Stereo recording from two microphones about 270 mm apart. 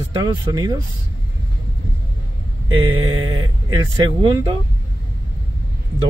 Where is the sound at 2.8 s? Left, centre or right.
Centre.